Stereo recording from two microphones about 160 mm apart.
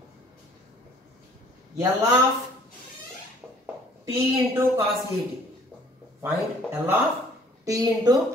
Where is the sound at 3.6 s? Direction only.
15° right (ahead or behind).